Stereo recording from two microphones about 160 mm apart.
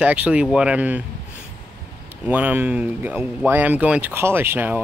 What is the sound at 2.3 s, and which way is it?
Speech, 10° right (ahead or behind).